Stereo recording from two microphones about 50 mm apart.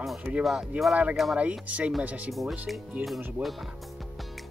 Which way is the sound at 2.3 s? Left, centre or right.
Centre.